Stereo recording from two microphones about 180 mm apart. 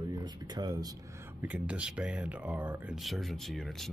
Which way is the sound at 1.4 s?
10° right (ahead or behind).